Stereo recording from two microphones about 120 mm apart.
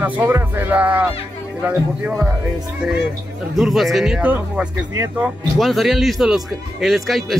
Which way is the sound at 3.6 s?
Centre (ahead or behind).